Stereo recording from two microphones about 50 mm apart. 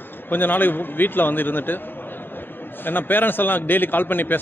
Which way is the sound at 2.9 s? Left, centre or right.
Left.